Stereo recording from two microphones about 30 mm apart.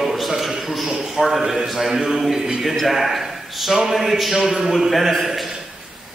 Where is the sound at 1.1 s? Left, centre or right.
Centre.